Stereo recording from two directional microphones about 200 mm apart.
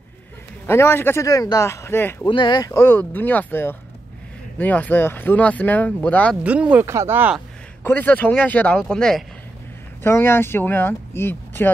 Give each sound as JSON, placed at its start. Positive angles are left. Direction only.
{"t": 0.7, "sound": "speech", "side_deg": 10}
{"t": 2.2, "sound": "speech", "side_deg": 25}
{"t": 6.4, "sound": "speech", "side_deg": -5}
{"t": 7.8, "sound": "speech", "side_deg": 10}